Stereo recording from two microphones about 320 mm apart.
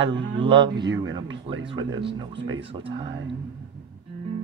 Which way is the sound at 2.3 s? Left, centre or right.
Right.